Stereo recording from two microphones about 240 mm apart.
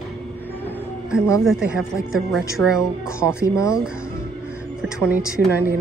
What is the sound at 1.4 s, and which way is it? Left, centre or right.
A woman's voice, centre.